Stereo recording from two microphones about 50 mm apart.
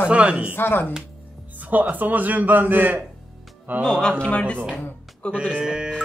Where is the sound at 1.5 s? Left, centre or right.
Right.